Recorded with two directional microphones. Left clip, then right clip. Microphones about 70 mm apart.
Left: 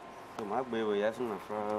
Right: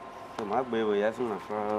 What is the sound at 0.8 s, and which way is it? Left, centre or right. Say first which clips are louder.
Speech: right 4 dB; centre.